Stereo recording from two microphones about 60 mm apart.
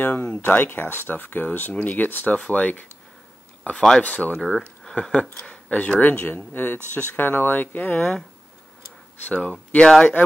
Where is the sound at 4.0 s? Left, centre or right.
Left.